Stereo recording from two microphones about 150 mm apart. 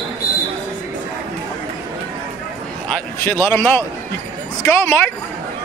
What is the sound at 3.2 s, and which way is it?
Speech, 15° left (ahead or behind).